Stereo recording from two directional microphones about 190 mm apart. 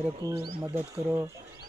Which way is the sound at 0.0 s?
10° right (ahead or behind).